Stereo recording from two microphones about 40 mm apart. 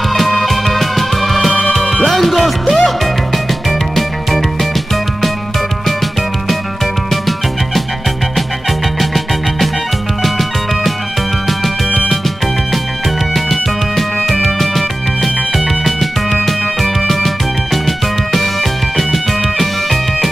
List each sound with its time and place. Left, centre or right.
0.1 s music: centre
1.5 s music: left
2.0 s music: centre
3.9 s music: centre
7.1 s music: centre
10.2 s music: centre
13.3 s music: centre
17.8 s music: centre